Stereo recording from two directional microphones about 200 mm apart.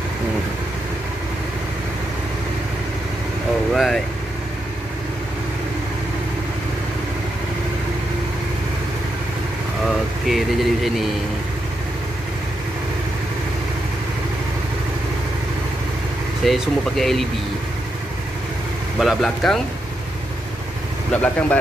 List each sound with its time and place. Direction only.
3.7 s vehicle: centre (ahead or behind)
9.8 s a sound: centre (ahead or behind)
16.4 s speech: centre (ahead or behind)
18.9 s speech: centre (ahead or behind)
21.1 s speech: 5° left (ahead or behind)